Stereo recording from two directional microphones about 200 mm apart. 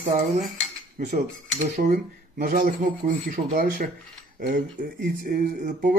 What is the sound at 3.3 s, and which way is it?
Speech, 45° right (ahead or behind).